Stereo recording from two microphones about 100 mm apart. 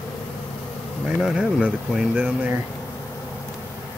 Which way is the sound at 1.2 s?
5° right (ahead or behind).